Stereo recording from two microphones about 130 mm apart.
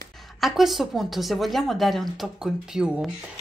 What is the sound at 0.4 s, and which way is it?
A woman's voice, centre (ahead or behind).